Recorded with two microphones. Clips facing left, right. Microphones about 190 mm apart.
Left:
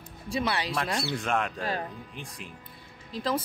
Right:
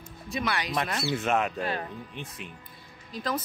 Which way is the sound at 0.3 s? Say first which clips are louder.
Left 1 dB; 30° left (ahead or behind).